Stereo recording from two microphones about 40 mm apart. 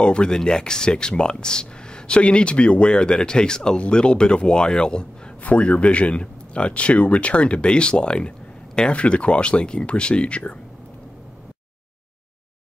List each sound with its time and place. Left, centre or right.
0.0 s speech: left